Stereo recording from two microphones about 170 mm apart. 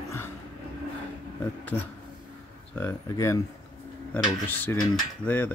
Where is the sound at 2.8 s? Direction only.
15° left (ahead or behind).